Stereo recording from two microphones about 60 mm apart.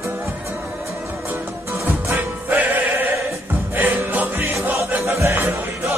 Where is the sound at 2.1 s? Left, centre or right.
Right.